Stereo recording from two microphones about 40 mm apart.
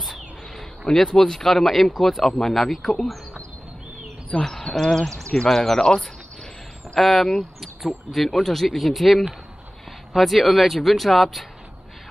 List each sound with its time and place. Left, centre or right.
0.9 s speech: centre
4.3 s speech: centre
7.0 s speech: centre